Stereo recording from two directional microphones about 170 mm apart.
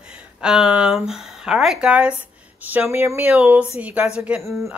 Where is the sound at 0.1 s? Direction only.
5° right (ahead or behind).